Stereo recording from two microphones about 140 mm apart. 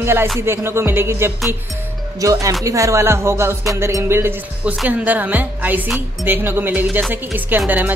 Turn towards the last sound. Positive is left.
turn(degrees=-10)  # may be behind; listen again after turning